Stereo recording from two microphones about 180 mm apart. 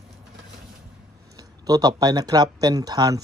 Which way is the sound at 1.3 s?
20° right (ahead or behind).